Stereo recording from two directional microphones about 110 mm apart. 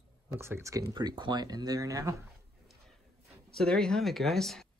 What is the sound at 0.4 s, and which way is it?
Speech, 25° right (ahead or behind).